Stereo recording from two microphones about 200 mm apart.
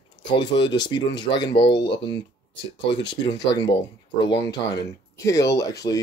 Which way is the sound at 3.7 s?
60° left (ahead or behind).